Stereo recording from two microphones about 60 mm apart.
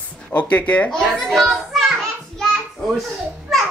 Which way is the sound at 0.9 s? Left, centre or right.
Centre.